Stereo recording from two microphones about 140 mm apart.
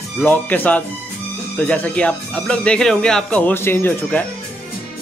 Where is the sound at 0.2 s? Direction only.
10° left (ahead or behind).